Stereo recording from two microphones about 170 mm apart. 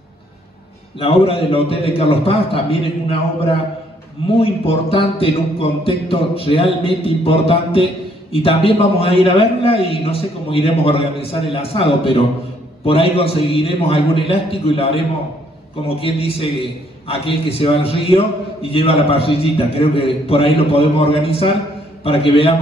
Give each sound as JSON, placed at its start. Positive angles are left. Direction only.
{"t": 0.9, "sound": "a man's voice", "side_deg": 35}